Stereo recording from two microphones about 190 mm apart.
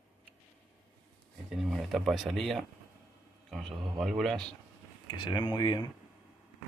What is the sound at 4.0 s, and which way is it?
Speech, centre (ahead or behind).